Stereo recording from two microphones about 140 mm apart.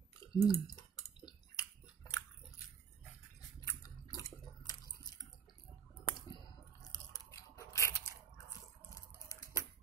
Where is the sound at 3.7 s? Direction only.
25° left (ahead or behind).